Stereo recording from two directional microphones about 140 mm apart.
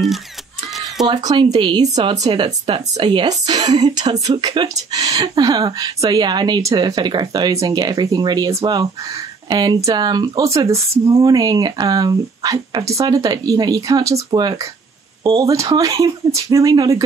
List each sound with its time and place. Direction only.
1.0 s a woman's voice: 35° right (ahead or behind)